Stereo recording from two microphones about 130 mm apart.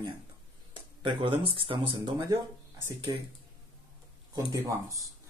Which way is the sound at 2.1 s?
25° right (ahead or behind).